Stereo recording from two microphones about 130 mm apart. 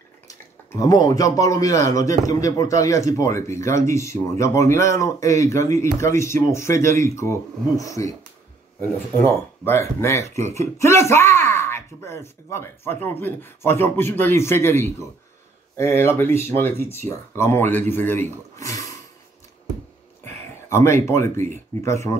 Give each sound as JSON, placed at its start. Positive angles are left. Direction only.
{"t": 0.3, "sound": "speech", "side_deg": 25}
{"t": 9.2, "sound": "a man's voice", "side_deg": 20}
{"t": 20.7, "sound": "speech", "side_deg": 20}